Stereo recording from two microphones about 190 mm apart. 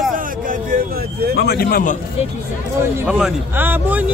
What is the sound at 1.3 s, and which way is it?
Speech, 60° left (ahead or behind).